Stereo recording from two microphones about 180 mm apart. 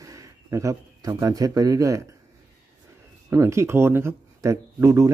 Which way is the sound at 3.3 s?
15° right (ahead or behind).